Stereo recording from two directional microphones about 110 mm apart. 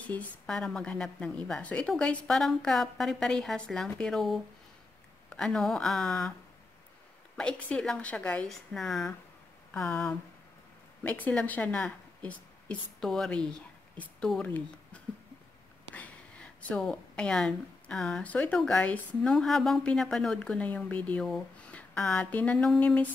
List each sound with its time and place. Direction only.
0.0 s a woman's voice: 10° left (ahead or behind)
7.3 s speech: 10° left (ahead or behind)
9.8 s a woman's voice: 15° left (ahead or behind)
15.9 s speech: 15° left (ahead or behind)